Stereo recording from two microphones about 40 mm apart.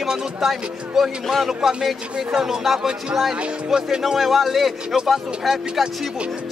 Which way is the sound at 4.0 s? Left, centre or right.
Centre.